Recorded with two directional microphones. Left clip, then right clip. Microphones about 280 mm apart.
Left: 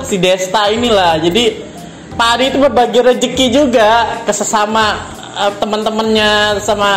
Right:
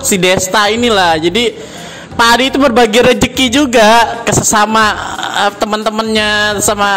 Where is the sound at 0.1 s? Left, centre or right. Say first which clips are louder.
Right 1 dB; right.